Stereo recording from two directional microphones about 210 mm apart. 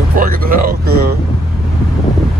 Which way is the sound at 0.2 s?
40° right (ahead or behind).